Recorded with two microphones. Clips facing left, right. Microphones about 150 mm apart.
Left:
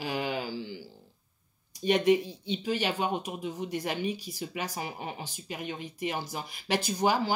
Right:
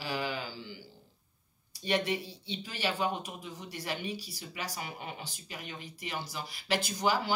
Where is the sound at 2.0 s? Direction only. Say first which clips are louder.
Left 10 dB; 45° left (ahead or behind).